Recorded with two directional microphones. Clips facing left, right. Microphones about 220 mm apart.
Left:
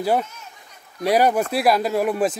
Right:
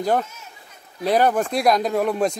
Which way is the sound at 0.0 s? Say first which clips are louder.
Even; 10° left (ahead or behind).